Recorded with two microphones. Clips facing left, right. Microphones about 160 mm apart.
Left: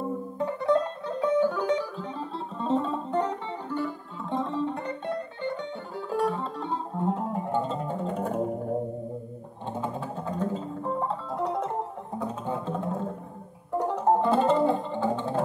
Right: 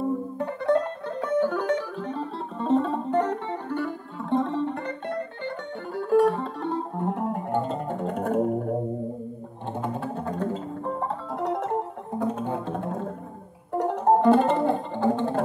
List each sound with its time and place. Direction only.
0.4 s music: 55° right (ahead or behind)
9.8 s music: 60° right (ahead or behind)